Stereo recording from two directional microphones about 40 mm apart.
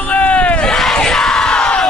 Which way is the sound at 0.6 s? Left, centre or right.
Centre.